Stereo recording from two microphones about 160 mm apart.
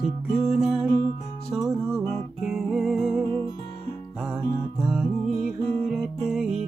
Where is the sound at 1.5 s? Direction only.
5° right (ahead or behind).